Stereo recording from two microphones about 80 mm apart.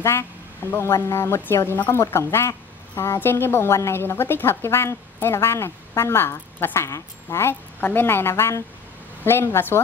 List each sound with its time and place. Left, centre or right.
0.0 s a woman's voice: left